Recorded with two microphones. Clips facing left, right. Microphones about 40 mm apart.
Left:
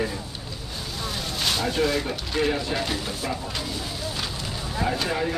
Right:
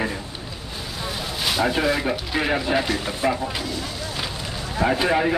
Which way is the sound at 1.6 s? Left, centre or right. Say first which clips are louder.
Right 5 dB; centre.